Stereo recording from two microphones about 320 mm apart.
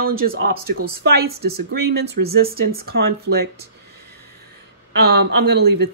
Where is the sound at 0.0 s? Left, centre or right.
Right.